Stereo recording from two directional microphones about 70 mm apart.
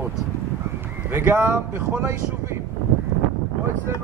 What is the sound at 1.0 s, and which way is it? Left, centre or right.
A man's voice, right.